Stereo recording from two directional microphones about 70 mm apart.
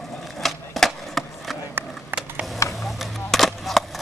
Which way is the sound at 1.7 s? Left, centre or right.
Right.